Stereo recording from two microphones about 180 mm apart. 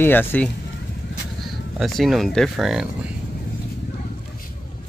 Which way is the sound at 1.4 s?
Centre (ahead or behind).